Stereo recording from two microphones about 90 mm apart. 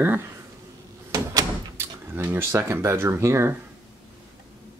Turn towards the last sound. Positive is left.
turn(degrees=-30)  # may be behind; listen again after turning